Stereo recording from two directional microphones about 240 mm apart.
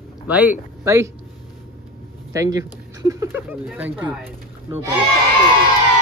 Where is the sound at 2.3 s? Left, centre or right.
Centre.